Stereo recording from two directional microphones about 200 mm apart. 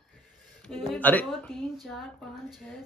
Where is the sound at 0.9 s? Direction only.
10° left (ahead or behind).